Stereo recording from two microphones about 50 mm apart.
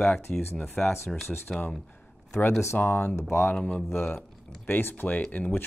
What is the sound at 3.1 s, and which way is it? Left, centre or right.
Speech, left.